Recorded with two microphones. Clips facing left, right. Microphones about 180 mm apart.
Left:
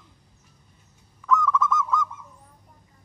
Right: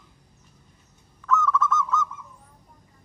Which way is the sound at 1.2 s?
15° left (ahead or behind).